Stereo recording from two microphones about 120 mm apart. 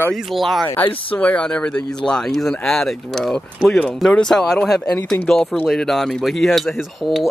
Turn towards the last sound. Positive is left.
turn(degrees=0)  # may be behind; listen again after turning